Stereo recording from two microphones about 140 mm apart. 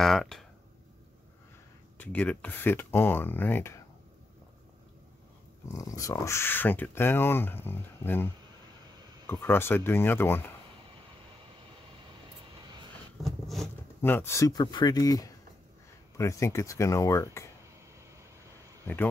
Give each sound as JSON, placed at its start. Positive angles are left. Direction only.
{"t": 0.0, "sound": "speech", "side_deg": 0}
{"t": 2.0, "sound": "speech", "side_deg": 10}
{"t": 5.7, "sound": "speech", "side_deg": 25}
{"t": 9.3, "sound": "speech", "side_deg": 15}
{"t": 13.2, "sound": "a sound", "side_deg": 0}
{"t": 14.0, "sound": "speech", "side_deg": 15}